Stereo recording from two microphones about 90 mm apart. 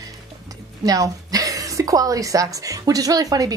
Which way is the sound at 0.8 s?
40° right (ahead or behind).